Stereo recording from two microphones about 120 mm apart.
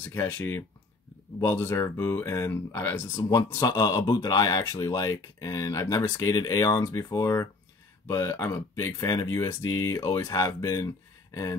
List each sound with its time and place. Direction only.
0.0 s speech: 20° left (ahead or behind)